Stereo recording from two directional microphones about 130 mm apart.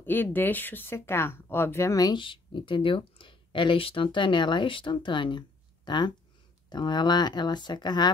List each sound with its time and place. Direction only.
0.0 s speech: 15° left (ahead or behind); by 8.1 s 35° left (ahead or behind)